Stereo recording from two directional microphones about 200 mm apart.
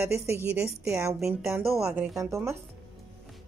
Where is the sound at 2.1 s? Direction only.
15° right (ahead or behind).